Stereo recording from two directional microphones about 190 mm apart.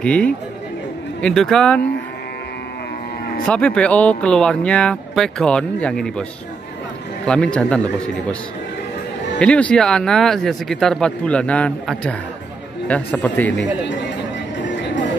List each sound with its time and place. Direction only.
0.0 s speech: 5° left (ahead or behind)
3.4 s speech: 5° left (ahead or behind)
7.2 s speech: 5° left (ahead or behind)
9.4 s speech: 5° left (ahead or behind)
14.6 s music: 70° left (ahead or behind)